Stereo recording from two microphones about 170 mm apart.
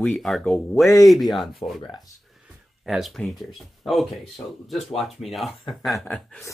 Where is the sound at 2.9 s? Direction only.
Centre (ahead or behind).